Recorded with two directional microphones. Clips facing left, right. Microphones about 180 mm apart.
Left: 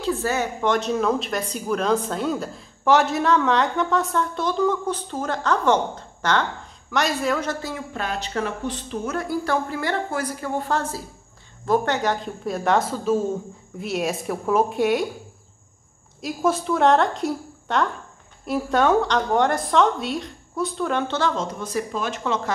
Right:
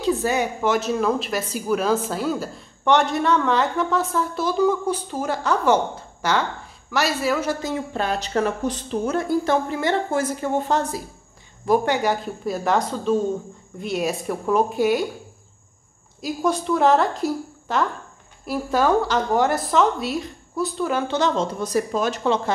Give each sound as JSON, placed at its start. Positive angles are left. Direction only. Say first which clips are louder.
{"t": 0.0, "sound": "a sound", "louder": "right 2 dB", "side_deg": -15}
{"t": 0.6, "sound": "a woman's voice", "louder": "right 1 dB", "side_deg": -5}
{"t": 7.6, "sound": "speech", "louder": "right 4 dB", "side_deg": -30}
{"t": 9.1, "sound": "a woman's voice", "louder": "right 3 dB", "side_deg": -25}
{"t": 16.2, "sound": "a woman's voice", "louder": "even", "side_deg": 0}
{"t": 21.2, "sound": "speech", "louder": "right 3 dB", "side_deg": -25}